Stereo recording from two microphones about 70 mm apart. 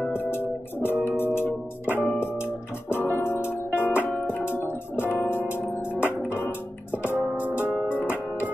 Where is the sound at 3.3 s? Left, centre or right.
Right.